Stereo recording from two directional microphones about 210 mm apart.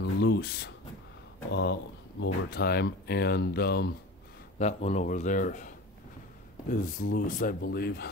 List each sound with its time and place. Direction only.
0.0 s speech: 55° left (ahead or behind)
4.6 s speech: 30° left (ahead or behind)
6.7 s speech: 40° left (ahead or behind)